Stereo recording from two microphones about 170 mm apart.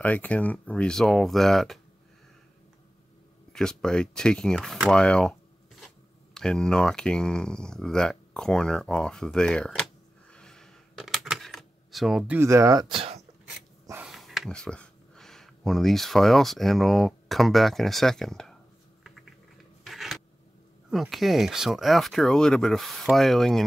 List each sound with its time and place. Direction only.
0.0 s speech: 10° left (ahead or behind)
3.5 s speech: 5° left (ahead or behind)
6.3 s speech: 5° left (ahead or behind)
10.3 s a sound: 5° left (ahead or behind)
12.4 s speech: 15° right (ahead or behind); by 13.2 s 35° right (ahead or behind)
14.0 s speech: centre (ahead or behind)
19.8 s a sound: centre (ahead or behind)
20.9 s speech: centre (ahead or behind)